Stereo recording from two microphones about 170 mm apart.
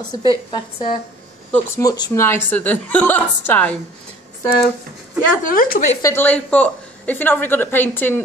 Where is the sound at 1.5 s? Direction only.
20° left (ahead or behind).